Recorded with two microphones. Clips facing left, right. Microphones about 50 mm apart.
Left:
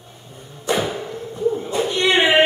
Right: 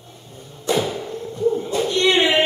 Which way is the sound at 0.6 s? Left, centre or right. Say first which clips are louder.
Even; centre.